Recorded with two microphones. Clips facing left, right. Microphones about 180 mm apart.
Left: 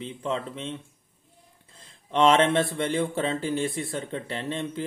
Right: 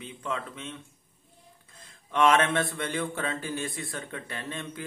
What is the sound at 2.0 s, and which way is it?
A man's voice, 25° left (ahead or behind).